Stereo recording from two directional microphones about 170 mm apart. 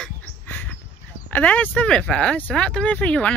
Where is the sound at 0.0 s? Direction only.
10° left (ahead or behind).